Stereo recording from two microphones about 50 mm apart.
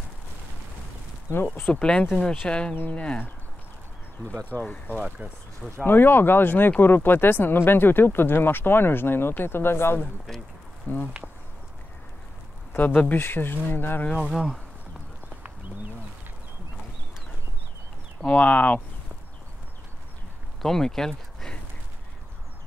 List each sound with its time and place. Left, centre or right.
1.7 s speech: left
4.6 s speech: left
5.2 s speech: right
5.9 s speech: left
10.9 s speech: left
12.7 s speech: left
14.1 s speech: centre
18.2 s speech: left
20.6 s speech: centre